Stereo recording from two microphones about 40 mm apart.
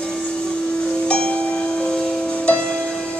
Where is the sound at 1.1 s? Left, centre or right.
Left.